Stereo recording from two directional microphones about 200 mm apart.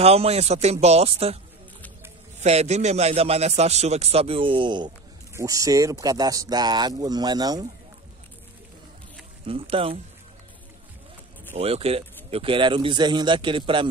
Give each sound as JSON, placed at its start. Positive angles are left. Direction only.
{"t": 0.0, "sound": "speech", "side_deg": -30}
{"t": 2.4, "sound": "a man's voice", "side_deg": -35}
{"t": 9.5, "sound": "a man's voice", "side_deg": -30}
{"t": 11.5, "sound": "a man's voice", "side_deg": -30}